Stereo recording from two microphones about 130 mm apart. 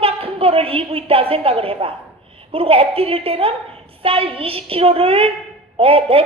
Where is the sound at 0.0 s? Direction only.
45° right (ahead or behind).